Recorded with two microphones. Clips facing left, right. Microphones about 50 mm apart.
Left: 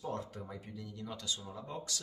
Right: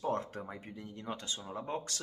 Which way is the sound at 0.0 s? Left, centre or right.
Right.